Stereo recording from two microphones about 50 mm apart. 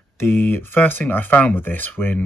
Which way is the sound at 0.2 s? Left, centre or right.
Left.